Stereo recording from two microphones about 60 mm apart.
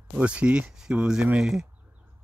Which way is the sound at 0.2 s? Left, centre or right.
Centre.